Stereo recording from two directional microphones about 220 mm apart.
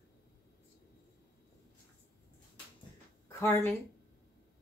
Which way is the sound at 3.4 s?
10° left (ahead or behind).